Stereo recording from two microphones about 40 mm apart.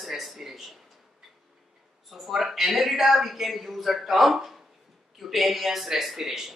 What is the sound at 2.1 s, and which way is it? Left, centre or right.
A man's voice, centre.